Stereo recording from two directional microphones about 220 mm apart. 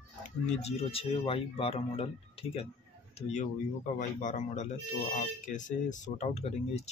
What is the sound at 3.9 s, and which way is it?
Speech, 35° left (ahead or behind).